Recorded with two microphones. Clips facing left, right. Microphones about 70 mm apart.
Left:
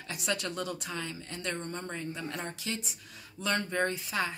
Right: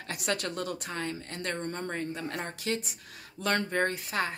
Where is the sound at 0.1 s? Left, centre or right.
Right.